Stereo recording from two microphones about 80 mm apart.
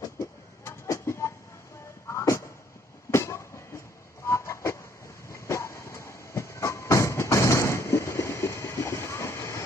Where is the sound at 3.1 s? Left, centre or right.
Left.